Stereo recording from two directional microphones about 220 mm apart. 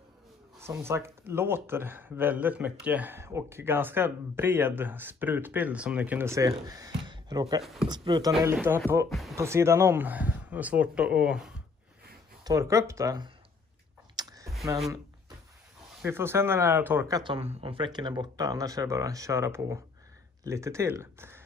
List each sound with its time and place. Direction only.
0.6 s speech: 10° right (ahead or behind)
8.5 s speech: 10° right (ahead or behind)
12.4 s speech: 15° right (ahead or behind)
14.1 s a sound: 15° right (ahead or behind)
16.0 s speech: 10° right (ahead or behind)
17.2 s speech: 25° right (ahead or behind)